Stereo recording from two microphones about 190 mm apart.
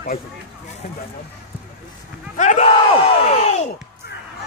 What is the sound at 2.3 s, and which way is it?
Battle cry, 40° left (ahead or behind).